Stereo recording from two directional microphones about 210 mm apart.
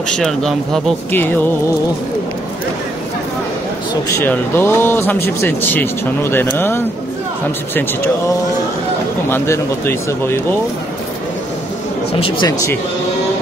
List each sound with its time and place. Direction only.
0.2 s speech: centre (ahead or behind)
4.2 s speech: 10° left (ahead or behind)
9.3 s speech: 10° left (ahead or behind)
12.2 s speech: 25° left (ahead or behind)